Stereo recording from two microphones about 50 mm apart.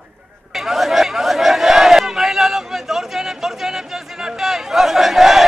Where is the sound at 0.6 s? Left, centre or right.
Centre.